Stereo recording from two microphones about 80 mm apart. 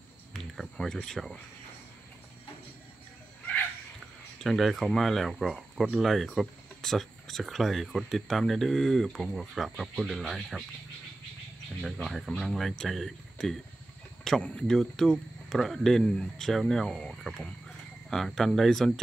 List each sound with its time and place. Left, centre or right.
0.6 s speech: centre
4.4 s speech: centre
11.8 s speech: centre